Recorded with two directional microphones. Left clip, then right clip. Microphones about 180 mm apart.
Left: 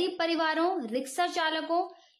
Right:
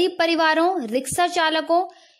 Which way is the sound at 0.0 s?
40° right (ahead or behind).